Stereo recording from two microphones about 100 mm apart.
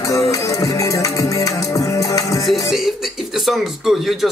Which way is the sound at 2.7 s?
Centre (ahead or behind).